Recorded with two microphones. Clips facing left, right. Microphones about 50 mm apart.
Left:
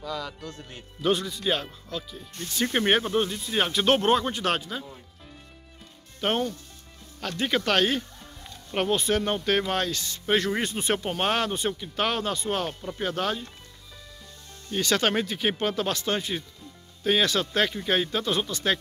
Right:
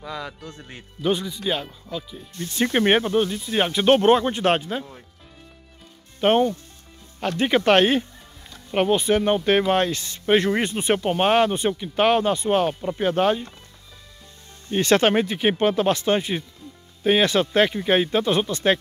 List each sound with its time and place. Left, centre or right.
0.0 s speech: right
1.0 s speech: centre
2.3 s speech: right
2.7 s speech: right
3.1 s speech: centre
4.2 s speech: right
6.2 s speech: right
8.7 s speech: centre
14.7 s speech: right
15.0 s speech: right